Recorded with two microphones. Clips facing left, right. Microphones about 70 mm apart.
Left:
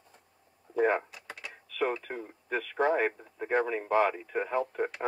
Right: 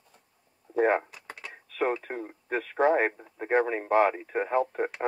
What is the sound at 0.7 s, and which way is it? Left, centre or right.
Speech, right.